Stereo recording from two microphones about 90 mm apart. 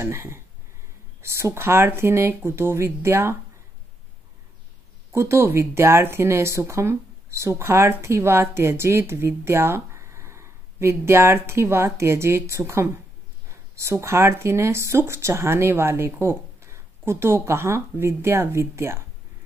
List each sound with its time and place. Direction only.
0.0 s speech: 30° right (ahead or behind)
5.1 s speech: 30° right (ahead or behind)